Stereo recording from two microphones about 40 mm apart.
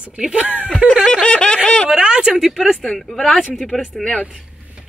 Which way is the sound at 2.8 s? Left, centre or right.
Centre.